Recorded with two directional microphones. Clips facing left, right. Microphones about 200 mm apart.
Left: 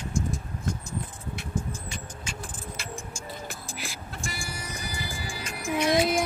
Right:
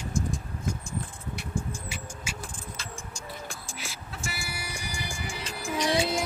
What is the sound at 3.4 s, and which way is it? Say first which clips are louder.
Music: left 2 dB; centre (ahead or behind).